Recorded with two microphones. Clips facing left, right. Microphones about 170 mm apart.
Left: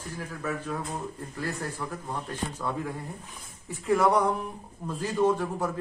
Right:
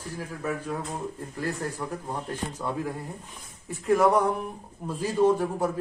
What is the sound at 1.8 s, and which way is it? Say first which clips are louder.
Speech: right 2 dB; 25° right (ahead or behind).